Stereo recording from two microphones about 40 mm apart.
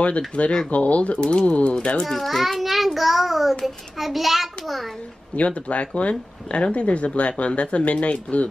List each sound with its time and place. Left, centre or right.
0.3 s speech: left
2.0 s a child's voice: centre
5.3 s speech: left